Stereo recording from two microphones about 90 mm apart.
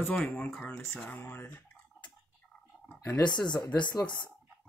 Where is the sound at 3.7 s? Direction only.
55° left (ahead or behind).